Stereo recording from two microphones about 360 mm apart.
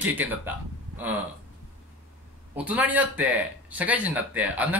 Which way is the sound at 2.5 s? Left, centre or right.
Centre.